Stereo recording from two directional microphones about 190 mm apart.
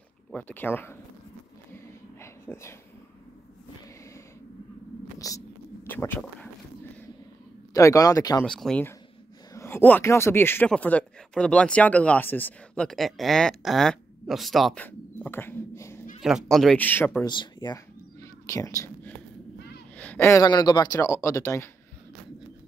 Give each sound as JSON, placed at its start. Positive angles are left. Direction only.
{"t": 0.3, "sound": "speech", "side_deg": 10}
{"t": 2.2, "sound": "a sound", "side_deg": 15}
{"t": 5.2, "sound": "speech", "side_deg": 20}
{"t": 7.7, "sound": "speech", "side_deg": 15}
{"t": 8.5, "sound": "speech", "side_deg": 5}
{"t": 16.2, "sound": "speech", "side_deg": 0}
{"t": 17.3, "sound": "cat", "side_deg": 25}
{"t": 20.0, "sound": "speech", "side_deg": 10}